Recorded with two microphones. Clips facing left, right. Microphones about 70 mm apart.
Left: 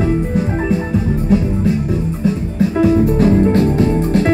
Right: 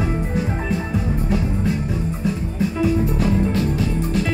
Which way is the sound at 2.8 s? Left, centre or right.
Left.